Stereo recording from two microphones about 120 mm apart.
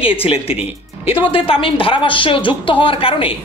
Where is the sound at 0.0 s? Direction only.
50° left (ahead or behind).